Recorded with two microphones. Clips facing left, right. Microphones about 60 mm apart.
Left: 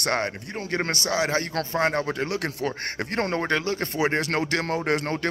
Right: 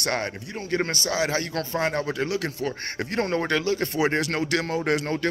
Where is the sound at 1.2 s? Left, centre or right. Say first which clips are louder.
Even; left.